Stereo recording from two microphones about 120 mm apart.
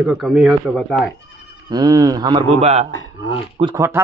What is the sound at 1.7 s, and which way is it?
Speech, 30° right (ahead or behind).